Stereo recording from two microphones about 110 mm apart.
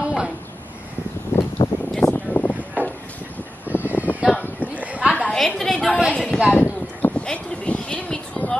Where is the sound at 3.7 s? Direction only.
15° right (ahead or behind).